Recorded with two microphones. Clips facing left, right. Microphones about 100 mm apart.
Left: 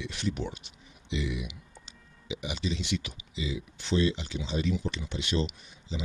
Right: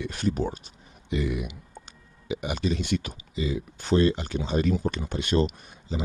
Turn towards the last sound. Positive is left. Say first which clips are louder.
# right 5 dB
turn(degrees=-45)  # may be behind; listen again after turning